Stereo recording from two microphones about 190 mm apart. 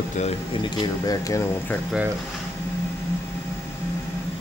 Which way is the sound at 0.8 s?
20° left (ahead or behind).